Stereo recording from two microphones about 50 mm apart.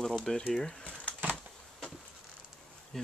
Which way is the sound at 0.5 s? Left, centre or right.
Centre.